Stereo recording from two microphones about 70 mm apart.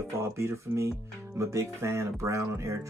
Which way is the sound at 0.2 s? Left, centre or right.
Right.